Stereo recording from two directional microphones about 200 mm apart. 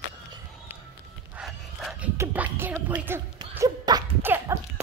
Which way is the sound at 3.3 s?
20° right (ahead or behind).